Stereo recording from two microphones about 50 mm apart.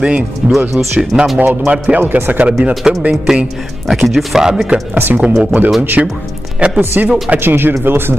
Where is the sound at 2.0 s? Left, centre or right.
Right.